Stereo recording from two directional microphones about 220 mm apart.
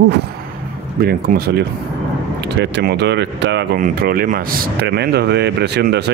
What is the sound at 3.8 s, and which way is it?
Speech, 40° right (ahead or behind).